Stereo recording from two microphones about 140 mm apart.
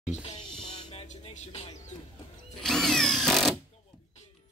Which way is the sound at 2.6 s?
5° left (ahead or behind).